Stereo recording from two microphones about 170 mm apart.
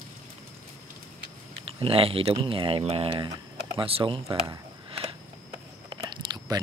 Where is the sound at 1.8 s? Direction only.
30° right (ahead or behind).